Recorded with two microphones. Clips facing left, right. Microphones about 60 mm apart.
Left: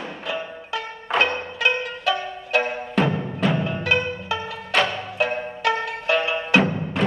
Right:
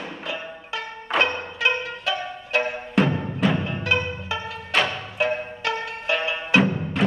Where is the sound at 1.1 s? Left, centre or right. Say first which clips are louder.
Left 1 dB; centre.